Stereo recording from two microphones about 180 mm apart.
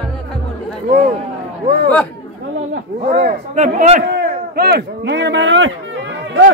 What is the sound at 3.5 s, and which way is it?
Speech, 40° right (ahead or behind).